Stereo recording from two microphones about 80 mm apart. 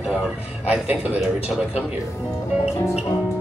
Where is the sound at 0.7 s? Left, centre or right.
Centre.